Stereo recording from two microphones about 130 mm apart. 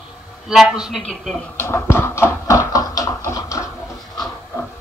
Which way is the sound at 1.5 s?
20° left (ahead or behind).